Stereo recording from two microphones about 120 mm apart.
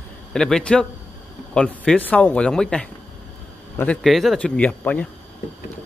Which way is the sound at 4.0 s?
Centre (ahead or behind).